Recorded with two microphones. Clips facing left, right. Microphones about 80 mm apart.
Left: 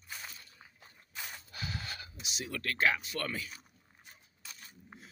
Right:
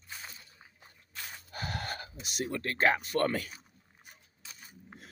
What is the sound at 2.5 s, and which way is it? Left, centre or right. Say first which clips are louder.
Speech: right 3 dB; right.